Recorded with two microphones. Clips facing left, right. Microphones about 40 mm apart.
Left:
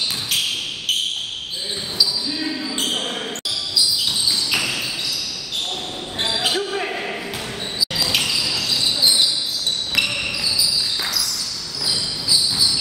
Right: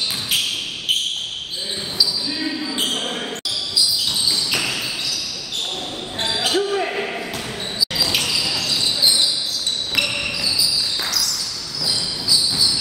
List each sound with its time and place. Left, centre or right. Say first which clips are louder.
2.0 s basketball bounce: even; centre
4.3 s basketball bounce: left 1 dB; centre
6.1 s basketball bounce: right 1 dB; centre